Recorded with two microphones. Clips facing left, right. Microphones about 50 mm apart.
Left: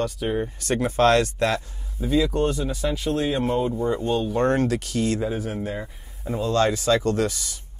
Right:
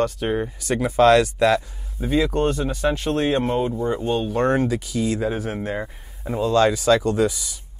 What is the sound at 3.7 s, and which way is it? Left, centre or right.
Speech, right.